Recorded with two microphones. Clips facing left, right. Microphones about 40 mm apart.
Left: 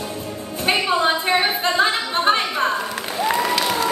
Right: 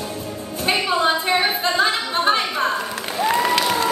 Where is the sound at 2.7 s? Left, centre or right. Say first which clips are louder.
Even; centre.